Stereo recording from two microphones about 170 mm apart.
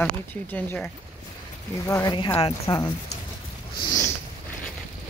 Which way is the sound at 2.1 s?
30° left (ahead or behind).